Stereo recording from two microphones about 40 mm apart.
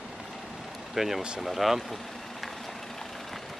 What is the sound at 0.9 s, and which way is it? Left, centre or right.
Speech, centre.